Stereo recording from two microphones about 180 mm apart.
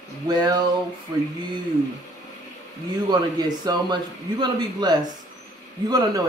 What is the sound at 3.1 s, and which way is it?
Speech, 25° right (ahead or behind).